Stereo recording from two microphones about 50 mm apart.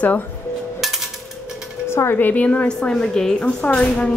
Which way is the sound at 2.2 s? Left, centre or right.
Left.